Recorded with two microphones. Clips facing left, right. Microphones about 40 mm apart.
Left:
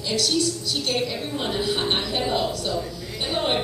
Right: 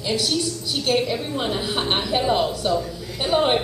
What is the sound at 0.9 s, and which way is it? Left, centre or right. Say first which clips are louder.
A woman's voice: right 6 dB; centre.